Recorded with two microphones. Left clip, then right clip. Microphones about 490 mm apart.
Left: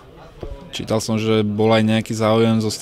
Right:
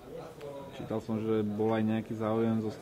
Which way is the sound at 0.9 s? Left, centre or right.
Left.